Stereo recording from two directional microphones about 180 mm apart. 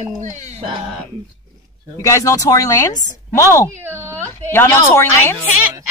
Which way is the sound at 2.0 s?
15° left (ahead or behind).